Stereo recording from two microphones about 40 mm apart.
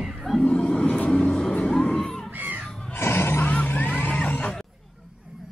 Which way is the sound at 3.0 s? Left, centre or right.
Left.